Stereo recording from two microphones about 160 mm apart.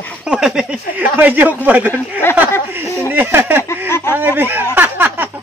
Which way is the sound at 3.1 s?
15° right (ahead or behind).